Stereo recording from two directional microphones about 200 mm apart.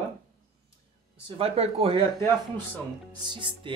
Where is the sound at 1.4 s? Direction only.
30° right (ahead or behind).